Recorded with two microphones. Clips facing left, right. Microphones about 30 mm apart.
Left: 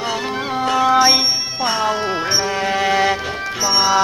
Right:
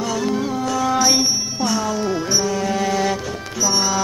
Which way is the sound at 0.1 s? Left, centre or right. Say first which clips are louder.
Even; left.